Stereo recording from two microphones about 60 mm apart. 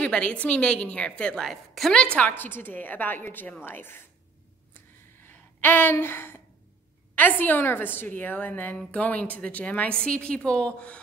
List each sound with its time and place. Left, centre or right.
0.0 s a woman's voice: centre
2.1 s a woman's voice: left
5.2 s a sound: left
7.2 s a woman's voice: left